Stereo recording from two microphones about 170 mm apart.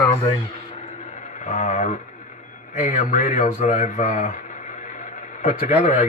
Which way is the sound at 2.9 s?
50° left (ahead or behind).